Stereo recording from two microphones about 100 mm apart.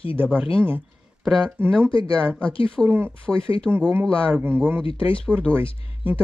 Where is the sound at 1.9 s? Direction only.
60° left (ahead or behind).